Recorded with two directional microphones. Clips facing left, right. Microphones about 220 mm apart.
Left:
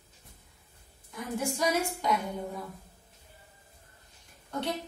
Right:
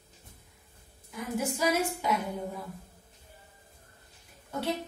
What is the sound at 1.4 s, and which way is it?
Speech, 5° right (ahead or behind).